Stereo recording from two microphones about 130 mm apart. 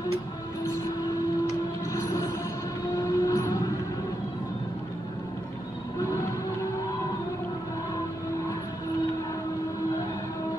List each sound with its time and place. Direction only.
1.9 s music: 25° left (ahead or behind)
2.9 s a sound: 25° left (ahead or behind)
5.9 s train: 25° left (ahead or behind)